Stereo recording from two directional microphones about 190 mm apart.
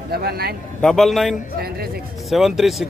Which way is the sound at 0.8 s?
Centre (ahead or behind).